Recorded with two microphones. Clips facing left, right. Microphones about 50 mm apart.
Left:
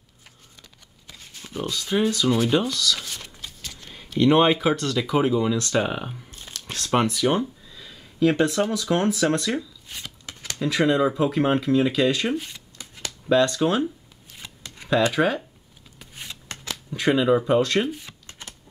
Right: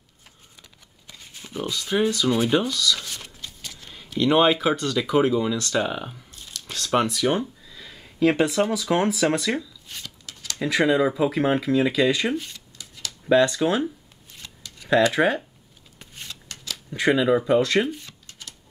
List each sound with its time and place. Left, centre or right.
1.0 s a sound: centre
2.3 s speech: centre
2.6 s a sound: centre
4.9 s speech: centre
6.3 s a sound: left
6.8 s speech: centre
8.2 s speech: centre
9.6 s shuffling cards: centre
10.0 s shuffling cards: left
10.6 s speech: centre
14.8 s a sound: left
15.1 s speech: centre
16.5 s shuffling cards: left
16.9 s speech: centre